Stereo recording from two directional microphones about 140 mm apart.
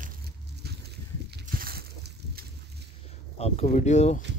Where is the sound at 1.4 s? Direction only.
90° right.